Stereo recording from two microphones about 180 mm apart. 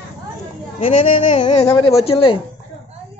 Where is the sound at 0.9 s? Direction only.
35° left (ahead or behind).